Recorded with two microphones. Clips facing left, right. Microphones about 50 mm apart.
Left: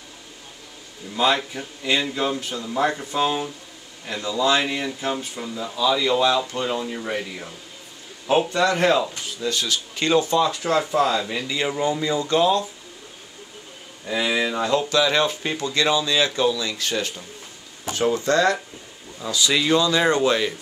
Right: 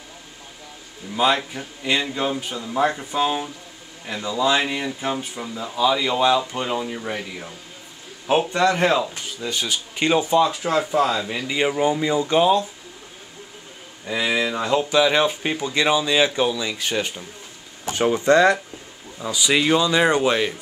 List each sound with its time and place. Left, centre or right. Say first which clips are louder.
1.1 s speech: right 1 dB; centre
11.4 s speech: right 7 dB; right
14.0 s speech: even; centre
14.7 s speech: right 3 dB; centre